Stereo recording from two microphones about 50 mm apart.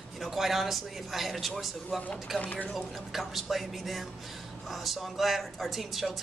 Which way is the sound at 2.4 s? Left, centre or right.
Left.